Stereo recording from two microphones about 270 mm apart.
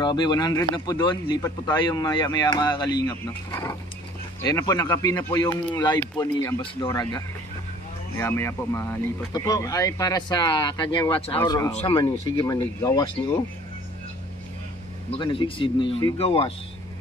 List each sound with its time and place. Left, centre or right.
0.0 s speech: centre
15.0 s speech: centre